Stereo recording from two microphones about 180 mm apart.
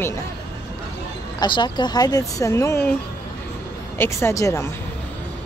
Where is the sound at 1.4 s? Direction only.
25° left (ahead or behind).